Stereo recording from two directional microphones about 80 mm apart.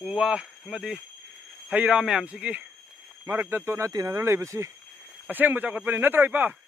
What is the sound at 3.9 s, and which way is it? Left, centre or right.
Speech, right.